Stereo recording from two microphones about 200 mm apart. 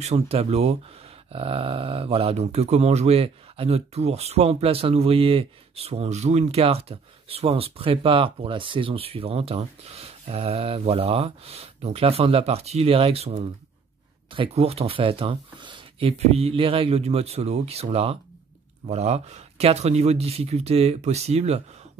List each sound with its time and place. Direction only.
0.0 s speech: 30° right (ahead or behind)